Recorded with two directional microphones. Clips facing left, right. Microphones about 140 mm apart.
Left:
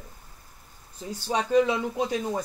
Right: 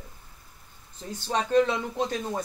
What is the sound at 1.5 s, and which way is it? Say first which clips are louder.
Speech: left 1 dB; 10° left (ahead or behind).